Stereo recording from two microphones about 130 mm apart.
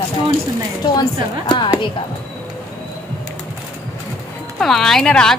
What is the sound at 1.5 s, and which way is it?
Speech, 35° left (ahead or behind).